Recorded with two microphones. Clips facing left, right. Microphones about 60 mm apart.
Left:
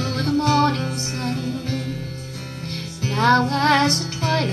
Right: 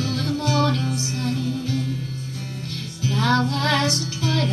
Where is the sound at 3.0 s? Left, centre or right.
Left.